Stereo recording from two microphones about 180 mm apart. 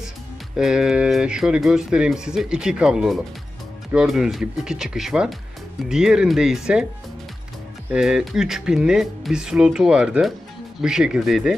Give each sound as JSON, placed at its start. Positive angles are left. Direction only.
{"t": 0.6, "sound": "speech", "side_deg": -5}
{"t": 7.9, "sound": "speech", "side_deg": -5}